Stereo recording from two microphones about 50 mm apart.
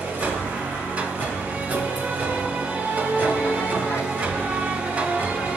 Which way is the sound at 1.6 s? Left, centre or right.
Right.